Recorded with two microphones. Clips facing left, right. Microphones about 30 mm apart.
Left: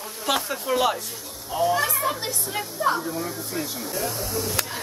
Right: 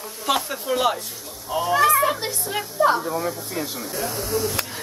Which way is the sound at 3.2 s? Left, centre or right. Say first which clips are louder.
Right 3 dB; right.